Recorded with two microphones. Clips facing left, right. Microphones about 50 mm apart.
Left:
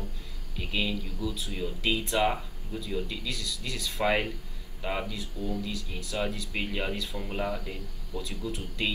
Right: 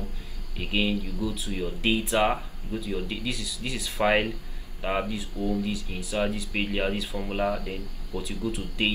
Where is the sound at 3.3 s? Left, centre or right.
Centre.